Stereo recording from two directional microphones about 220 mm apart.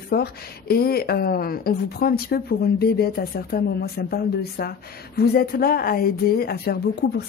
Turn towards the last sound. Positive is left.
turn(degrees=45)  # may be behind; listen again after turning